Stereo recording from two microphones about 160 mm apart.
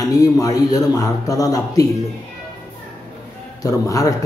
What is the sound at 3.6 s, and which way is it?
Speech, 20° left (ahead or behind).